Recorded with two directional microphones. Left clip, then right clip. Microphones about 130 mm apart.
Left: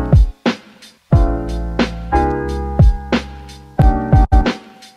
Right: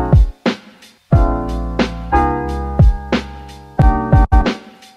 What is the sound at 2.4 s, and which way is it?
Music, 15° right (ahead or behind).